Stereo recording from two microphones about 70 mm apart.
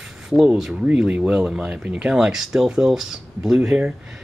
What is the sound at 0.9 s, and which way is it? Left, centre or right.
Speech, centre.